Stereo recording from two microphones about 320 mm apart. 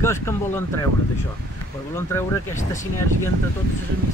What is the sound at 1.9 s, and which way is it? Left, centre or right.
Speech, centre.